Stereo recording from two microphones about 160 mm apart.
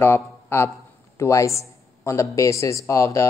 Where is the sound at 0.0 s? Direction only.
15° left (ahead or behind).